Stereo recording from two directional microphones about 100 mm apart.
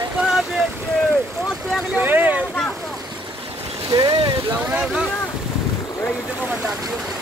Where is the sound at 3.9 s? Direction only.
40° right (ahead or behind).